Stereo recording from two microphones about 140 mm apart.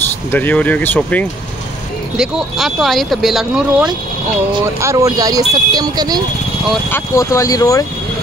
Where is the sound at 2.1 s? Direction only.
Centre (ahead or behind).